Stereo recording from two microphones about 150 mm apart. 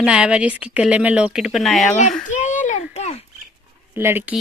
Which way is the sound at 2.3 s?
55° left (ahead or behind).